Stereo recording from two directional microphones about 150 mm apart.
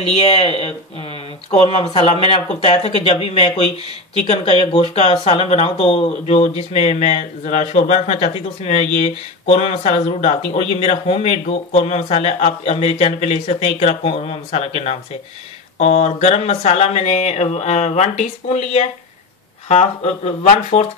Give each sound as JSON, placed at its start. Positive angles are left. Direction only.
{"t": 0.0, "sound": "speech", "side_deg": 45}